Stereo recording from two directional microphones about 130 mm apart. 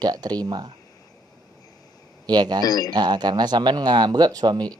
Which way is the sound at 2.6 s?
30° left (ahead or behind).